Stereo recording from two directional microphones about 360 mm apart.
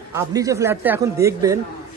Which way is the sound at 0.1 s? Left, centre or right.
Centre.